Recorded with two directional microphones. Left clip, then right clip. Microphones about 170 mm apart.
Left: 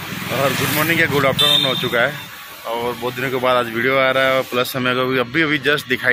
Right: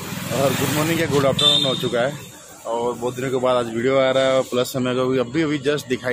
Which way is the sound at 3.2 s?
5° right (ahead or behind).